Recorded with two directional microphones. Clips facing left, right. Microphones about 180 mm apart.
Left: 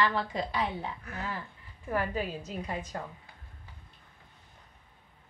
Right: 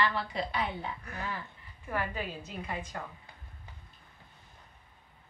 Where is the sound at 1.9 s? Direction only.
40° left (ahead or behind).